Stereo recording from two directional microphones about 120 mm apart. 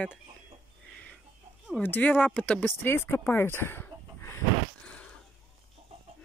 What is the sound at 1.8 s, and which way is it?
Speech, 15° left (ahead or behind).